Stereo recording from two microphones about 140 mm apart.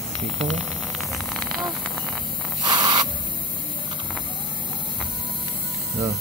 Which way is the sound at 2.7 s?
30° right (ahead or behind).